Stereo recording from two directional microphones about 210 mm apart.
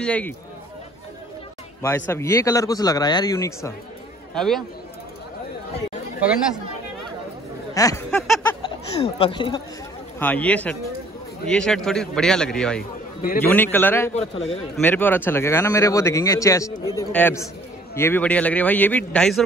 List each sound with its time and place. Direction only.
0.0 s a man's voice: 5° left (ahead or behind)
1.8 s speech: 10° left (ahead or behind)
4.3 s a man's voice: centre (ahead or behind)
7.7 s speech: 15° left (ahead or behind)
10.1 s a man's voice: 10° left (ahead or behind)
14.1 s a man's voice: 30° left (ahead or behind)
14.8 s speech: 10° left (ahead or behind)